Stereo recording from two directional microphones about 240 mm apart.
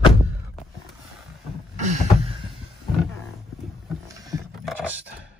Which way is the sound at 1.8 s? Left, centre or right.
Right.